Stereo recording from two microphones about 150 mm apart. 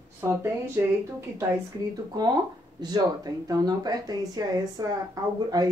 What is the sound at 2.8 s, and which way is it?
Speech, 25° right (ahead or behind).